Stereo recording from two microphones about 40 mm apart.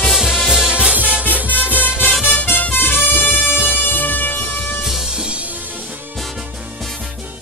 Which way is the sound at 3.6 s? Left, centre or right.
Left.